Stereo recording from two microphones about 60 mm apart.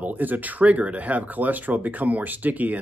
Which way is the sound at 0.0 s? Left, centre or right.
Right.